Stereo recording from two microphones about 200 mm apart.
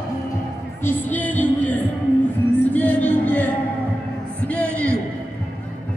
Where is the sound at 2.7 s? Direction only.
10° left (ahead or behind).